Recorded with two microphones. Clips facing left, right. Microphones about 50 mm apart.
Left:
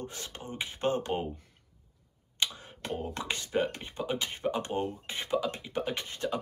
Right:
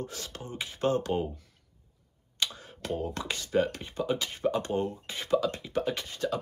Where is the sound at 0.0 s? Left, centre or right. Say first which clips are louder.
Right 2 dB; left.